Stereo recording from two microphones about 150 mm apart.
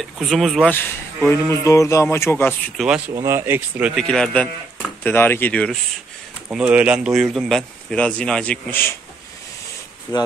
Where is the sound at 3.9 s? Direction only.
5° left (ahead or behind).